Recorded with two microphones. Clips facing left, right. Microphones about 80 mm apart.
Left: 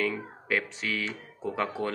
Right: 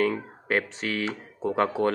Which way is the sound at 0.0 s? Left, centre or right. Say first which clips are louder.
Right 5 dB; right.